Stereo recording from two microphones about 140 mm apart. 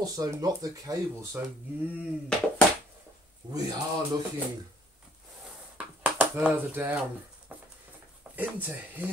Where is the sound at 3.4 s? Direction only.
30° right (ahead or behind).